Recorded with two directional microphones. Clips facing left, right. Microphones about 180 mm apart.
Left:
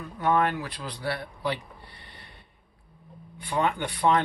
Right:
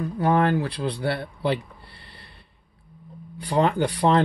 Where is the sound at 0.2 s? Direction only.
30° right (ahead or behind).